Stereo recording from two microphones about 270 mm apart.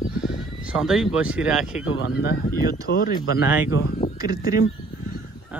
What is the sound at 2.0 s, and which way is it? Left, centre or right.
Speech, left.